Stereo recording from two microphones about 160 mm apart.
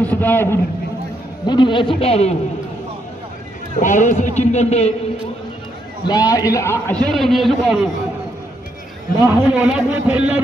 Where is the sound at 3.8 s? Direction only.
50° left (ahead or behind).